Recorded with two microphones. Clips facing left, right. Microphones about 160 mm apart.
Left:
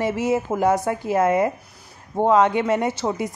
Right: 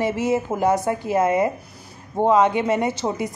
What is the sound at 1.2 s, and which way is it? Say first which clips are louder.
Speech: left 1 dB; 15° right (ahead or behind).